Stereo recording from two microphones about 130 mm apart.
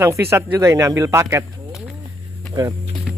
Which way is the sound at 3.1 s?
10° right (ahead or behind).